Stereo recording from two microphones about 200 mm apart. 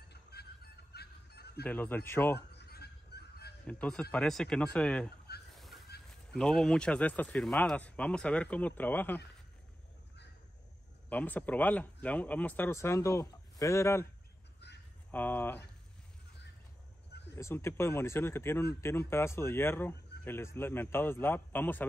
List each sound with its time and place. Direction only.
0.1 s music: 55° left (ahead or behind)
1.6 s speech: 10° left (ahead or behind)
2.5 s honk: 55° left (ahead or behind)
3.6 s speech: 5° left (ahead or behind)
5.6 s fowl: centre (ahead or behind)
6.3 s speech: 5° left (ahead or behind)
11.1 s speech: 10° left (ahead or behind)
15.0 s speech: 10° left (ahead or behind)
17.4 s speech: 15° left (ahead or behind)